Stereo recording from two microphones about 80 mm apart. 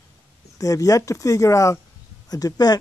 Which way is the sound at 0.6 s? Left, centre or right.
Left.